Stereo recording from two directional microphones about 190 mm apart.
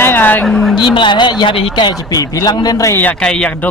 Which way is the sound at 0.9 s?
25° left (ahead or behind).